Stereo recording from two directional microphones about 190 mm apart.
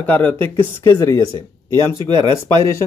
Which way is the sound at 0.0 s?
10° left (ahead or behind).